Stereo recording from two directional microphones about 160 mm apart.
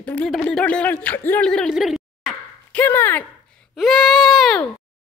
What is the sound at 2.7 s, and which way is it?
Speech, 15° left (ahead or behind).